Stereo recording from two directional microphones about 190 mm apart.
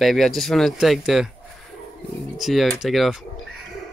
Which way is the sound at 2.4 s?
Centre (ahead or behind).